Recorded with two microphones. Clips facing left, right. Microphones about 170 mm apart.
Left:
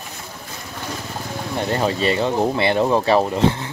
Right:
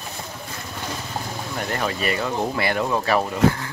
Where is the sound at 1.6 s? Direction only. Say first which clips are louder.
Left 6 dB; 25° left (ahead or behind).